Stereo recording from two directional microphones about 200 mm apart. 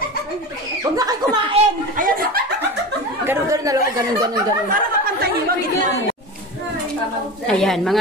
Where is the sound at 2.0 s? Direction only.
45° right (ahead or behind).